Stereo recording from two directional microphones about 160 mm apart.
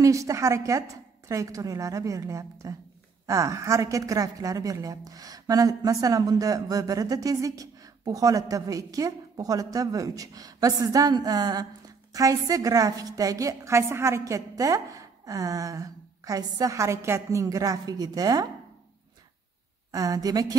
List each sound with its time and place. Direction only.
0.0 s a woman's voice: 20° right (ahead or behind)
19.9 s a woman's voice: 20° right (ahead or behind)